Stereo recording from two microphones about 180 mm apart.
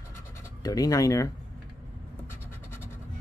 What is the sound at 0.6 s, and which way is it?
Speech, 20° left (ahead or behind).